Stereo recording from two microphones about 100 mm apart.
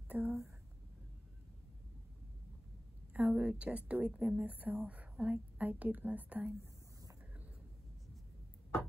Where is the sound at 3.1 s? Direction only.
15° right (ahead or behind).